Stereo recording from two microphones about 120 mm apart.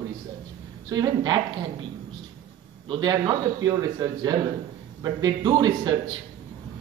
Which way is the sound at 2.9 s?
40° right (ahead or behind).